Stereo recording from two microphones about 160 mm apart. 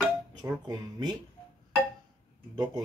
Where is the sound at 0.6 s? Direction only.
25° right (ahead or behind).